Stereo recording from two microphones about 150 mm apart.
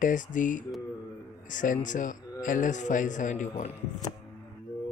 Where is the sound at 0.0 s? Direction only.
60° left (ahead or behind).